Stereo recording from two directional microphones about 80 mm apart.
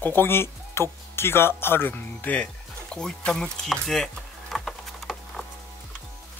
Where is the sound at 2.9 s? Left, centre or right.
Centre.